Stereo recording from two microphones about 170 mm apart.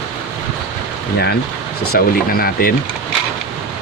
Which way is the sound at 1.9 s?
60° left (ahead or behind).